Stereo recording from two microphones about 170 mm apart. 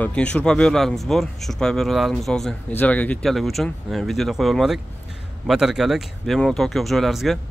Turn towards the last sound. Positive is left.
turn(degrees=0)  # may be behind; listen again after turning